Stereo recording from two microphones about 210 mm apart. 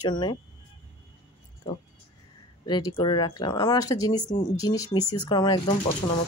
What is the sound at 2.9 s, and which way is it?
Speech, 20° left (ahead or behind).